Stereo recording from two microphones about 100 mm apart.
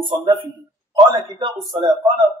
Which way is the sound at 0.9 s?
60° right (ahead or behind).